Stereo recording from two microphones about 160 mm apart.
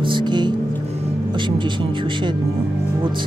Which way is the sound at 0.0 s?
30° right (ahead or behind).